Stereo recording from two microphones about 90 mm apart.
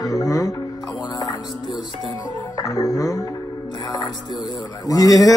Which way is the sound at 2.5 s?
40° left (ahead or behind).